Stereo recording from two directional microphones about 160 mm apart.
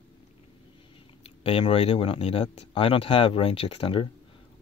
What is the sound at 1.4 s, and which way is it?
Speech, 35° left (ahead or behind).